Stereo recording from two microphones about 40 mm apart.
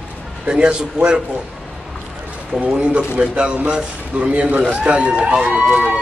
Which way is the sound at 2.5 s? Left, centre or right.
Right.